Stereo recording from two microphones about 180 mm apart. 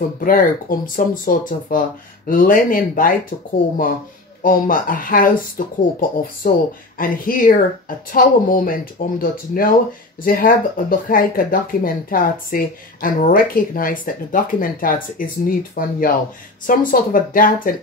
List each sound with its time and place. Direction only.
0.2 s speech: 50° left (ahead or behind)
4.4 s speech: 50° left (ahead or behind)